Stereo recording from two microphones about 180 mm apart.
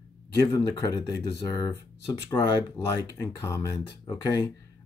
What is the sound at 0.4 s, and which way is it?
Speech, 20° left (ahead or behind).